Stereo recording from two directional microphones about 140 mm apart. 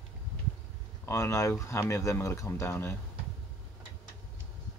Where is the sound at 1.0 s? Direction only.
20° left (ahead or behind).